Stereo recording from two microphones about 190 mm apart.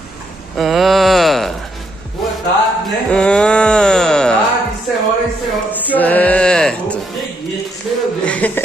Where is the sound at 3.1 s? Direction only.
5° left (ahead or behind).